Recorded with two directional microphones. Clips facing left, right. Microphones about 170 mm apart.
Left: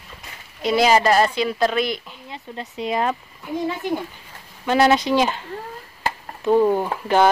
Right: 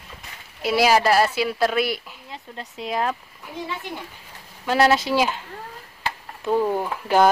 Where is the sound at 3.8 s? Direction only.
45° left (ahead or behind).